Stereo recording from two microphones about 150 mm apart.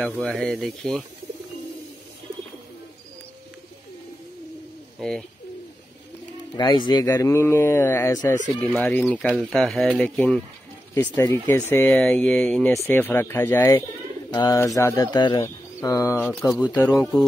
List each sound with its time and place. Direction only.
0.2 s speech: 5° left (ahead or behind)
6.5 s speech: 25° left (ahead or behind)
8.5 s speech: 5° left (ahead or behind)
12.7 s a man's voice: 15° left (ahead or behind)
16.5 s speech: centre (ahead or behind)